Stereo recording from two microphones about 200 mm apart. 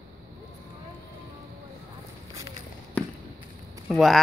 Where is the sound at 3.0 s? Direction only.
5° left (ahead or behind).